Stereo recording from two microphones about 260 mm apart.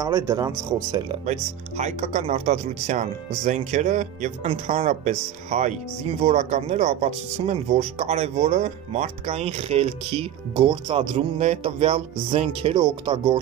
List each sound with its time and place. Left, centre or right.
0.0 s speech: centre
1.2 s speech: right